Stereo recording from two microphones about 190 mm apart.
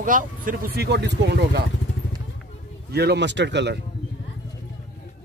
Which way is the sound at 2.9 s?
60° right (ahead or behind).